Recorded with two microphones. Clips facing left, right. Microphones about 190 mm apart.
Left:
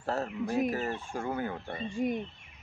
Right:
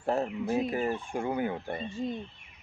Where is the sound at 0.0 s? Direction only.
15° right (ahead or behind).